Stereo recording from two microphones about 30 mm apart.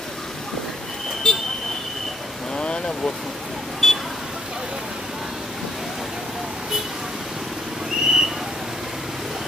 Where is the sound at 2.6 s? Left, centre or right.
Left.